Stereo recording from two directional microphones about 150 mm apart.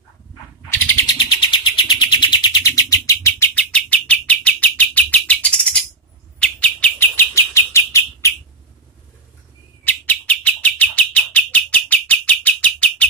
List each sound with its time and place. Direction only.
1.0 s bird: 30° left (ahead or behind)
9.8 s bird: 10° left (ahead or behind)